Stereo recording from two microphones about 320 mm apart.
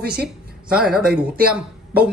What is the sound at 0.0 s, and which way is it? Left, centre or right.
Speech, right.